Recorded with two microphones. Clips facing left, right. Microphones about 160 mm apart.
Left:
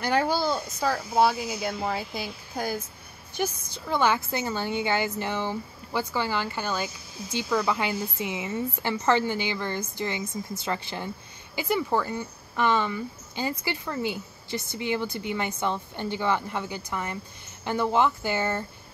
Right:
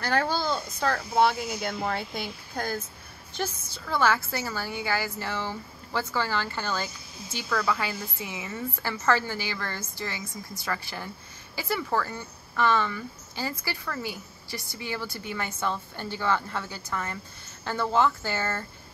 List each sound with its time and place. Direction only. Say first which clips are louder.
0.0 s a woman's voice: left 2 dB; 15° left (ahead or behind)